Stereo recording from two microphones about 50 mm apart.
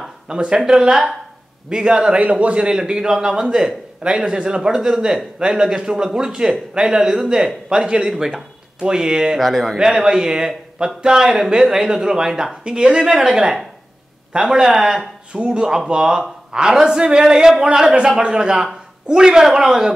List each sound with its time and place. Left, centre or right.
0.3 s a man's voice: centre
7.7 s a man's voice: centre
9.4 s speech: centre
9.8 s a man's voice: centre
15.3 s a man's voice: right